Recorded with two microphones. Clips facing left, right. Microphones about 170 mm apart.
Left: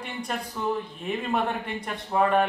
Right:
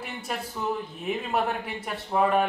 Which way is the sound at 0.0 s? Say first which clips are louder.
Left 1 dB; 5° right (ahead or behind).